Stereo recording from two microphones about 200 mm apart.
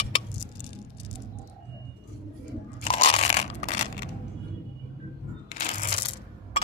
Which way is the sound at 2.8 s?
30° left (ahead or behind).